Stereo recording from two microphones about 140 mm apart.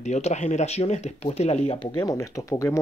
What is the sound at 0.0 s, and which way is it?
Speech, 55° left (ahead or behind).